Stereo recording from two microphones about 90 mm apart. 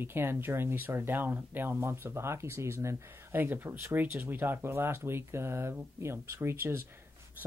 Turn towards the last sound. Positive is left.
turn(degrees=-30)  # may be behind; listen again after turning